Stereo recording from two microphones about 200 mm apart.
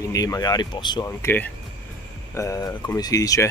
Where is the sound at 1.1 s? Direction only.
10° left (ahead or behind).